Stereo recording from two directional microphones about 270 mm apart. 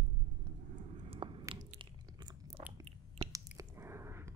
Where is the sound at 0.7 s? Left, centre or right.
Right.